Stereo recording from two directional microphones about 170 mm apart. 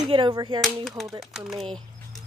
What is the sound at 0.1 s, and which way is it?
Speech, 25° right (ahead or behind).